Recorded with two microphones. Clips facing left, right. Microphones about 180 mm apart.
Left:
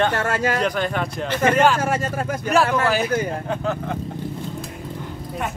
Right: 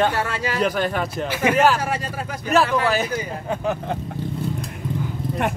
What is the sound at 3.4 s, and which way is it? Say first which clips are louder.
Speech: even; 10° right (ahead or behind).